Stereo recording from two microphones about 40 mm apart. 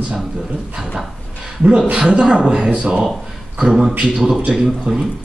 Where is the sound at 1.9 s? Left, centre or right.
Right.